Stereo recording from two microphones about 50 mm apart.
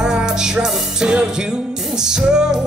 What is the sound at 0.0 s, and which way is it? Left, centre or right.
Music, centre.